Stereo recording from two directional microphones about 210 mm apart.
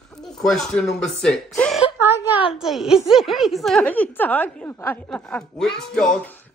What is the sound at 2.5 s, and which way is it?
A woman's voice, centre (ahead or behind).